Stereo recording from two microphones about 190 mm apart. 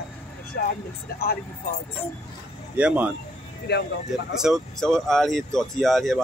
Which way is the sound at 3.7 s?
60° left (ahead or behind).